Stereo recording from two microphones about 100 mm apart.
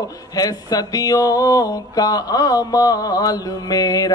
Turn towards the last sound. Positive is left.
turn(degrees=40)  # may be behind; listen again after turning